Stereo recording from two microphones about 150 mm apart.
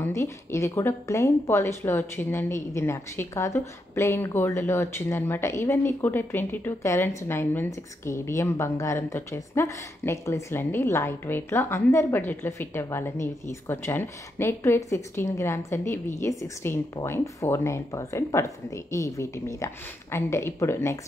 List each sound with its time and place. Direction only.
0.0 s a woman's voice: 15° left (ahead or behind)